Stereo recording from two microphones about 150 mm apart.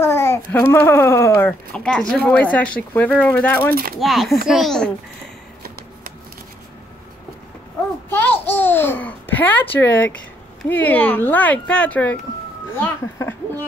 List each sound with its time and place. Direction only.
0.0 s babbling: 15° left (ahead or behind)
0.5 s speech: 10° left (ahead or behind)
1.7 s speech: 5° left (ahead or behind)
3.7 s speech: 85° right
4.0 s a child's voice: centre (ahead or behind)
8.1 s a child's voice: 15° left (ahead or behind)